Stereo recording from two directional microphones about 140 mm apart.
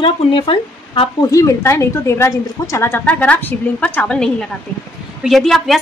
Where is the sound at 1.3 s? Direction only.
20° left (ahead or behind).